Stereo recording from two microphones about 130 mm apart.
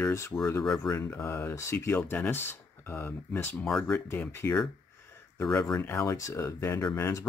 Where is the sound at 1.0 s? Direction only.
20° left (ahead or behind).